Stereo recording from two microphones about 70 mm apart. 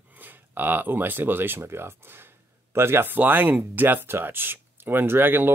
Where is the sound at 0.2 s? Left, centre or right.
Right.